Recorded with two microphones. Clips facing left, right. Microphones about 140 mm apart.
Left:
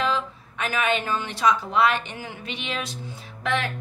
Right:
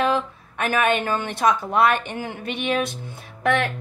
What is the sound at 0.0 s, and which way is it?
A woman's voice, 55° right (ahead or behind).